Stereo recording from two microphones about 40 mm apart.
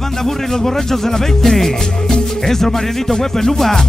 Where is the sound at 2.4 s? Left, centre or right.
Centre.